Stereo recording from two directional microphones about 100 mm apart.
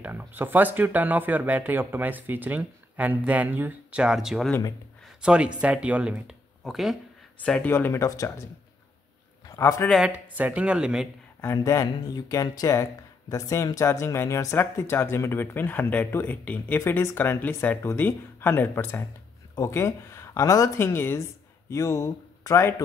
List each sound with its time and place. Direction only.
0.0 s speech: 20° right (ahead or behind); by 7.6 s 5° left (ahead or behind)
7.6 s speech: 20° left (ahead or behind)
9.5 s a man's voice: 30° left (ahead or behind)
9.9 s speech: 10° right (ahead or behind)
11.4 s speech: 30° left (ahead or behind)